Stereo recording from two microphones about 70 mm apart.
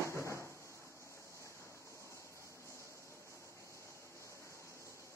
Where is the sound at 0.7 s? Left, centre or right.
Left.